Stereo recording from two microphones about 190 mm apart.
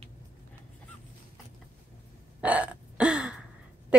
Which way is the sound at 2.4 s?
5° right (ahead or behind).